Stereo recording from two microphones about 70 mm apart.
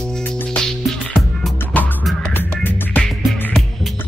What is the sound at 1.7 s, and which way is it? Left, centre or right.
Music, left.